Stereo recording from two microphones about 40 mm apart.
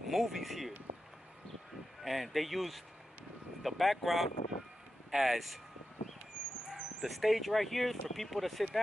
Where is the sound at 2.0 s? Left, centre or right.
Centre.